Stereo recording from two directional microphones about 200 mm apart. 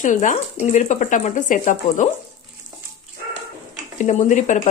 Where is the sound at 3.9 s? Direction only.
40° left (ahead or behind).